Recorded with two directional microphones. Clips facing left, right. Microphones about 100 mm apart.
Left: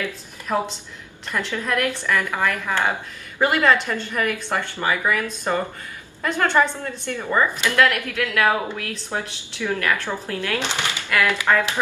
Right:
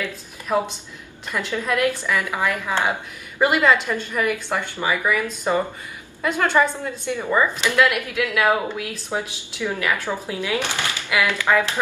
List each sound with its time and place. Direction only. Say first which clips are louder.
1.3 s a woman's voice: right 1 dB; 15° right (ahead or behind)
10.6 s speech: even; 20° left (ahead or behind)
11.1 s speech: left 1 dB; 10° right (ahead or behind)